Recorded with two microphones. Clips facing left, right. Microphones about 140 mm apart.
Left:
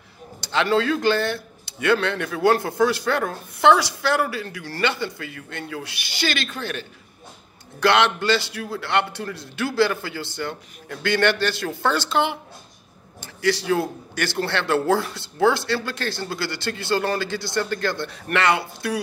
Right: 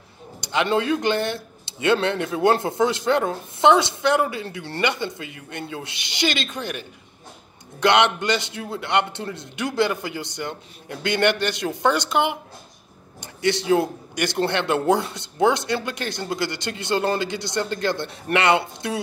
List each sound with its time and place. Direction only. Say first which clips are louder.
0.4 s speech: left 1 dB; 15° right (ahead or behind)